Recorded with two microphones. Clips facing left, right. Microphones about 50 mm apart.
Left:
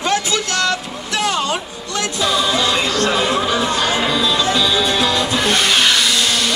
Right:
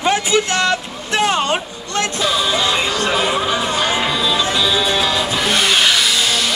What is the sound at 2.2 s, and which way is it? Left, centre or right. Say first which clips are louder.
Music: left 2 dB; centre.